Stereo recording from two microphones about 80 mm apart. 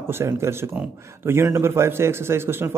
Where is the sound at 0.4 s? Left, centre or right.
Right.